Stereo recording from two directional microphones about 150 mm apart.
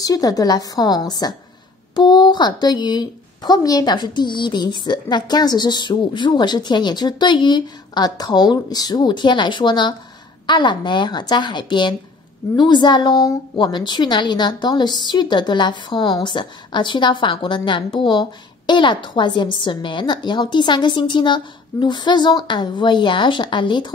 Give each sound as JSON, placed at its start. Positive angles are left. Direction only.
{"t": 0.0, "sound": "a woman's voice", "side_deg": 25}